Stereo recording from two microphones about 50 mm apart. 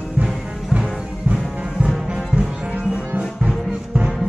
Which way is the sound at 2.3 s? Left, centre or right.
Centre.